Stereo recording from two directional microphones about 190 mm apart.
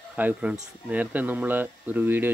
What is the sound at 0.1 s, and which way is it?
Speech, 10° right (ahead or behind).